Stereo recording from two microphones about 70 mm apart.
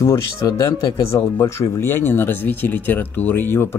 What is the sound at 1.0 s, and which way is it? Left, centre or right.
Speech, left.